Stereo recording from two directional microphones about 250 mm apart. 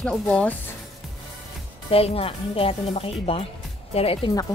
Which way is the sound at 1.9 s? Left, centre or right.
Left.